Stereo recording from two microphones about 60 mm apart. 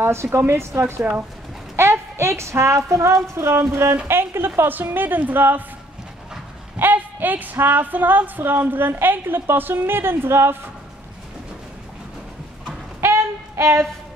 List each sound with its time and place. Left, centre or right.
0.0 s a woman's voice: right
6.8 s a sound: right
7.6 s a woman's voice: right
13.0 s child singing: right